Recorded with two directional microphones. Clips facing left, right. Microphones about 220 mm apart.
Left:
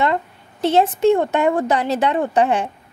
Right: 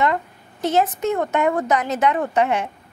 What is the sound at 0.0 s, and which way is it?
A woman's voice, 30° left (ahead or behind).